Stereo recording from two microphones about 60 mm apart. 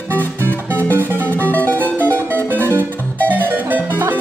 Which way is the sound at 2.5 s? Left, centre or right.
Left.